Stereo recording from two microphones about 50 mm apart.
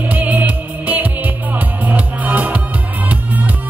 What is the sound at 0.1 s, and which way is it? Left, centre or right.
Music, right.